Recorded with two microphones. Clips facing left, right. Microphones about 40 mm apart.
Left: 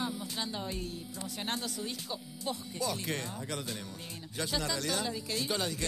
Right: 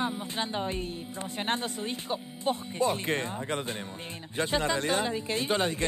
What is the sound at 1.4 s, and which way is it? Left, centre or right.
Speech, right.